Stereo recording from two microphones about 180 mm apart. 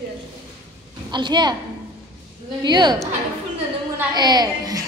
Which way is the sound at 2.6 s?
25° right (ahead or behind).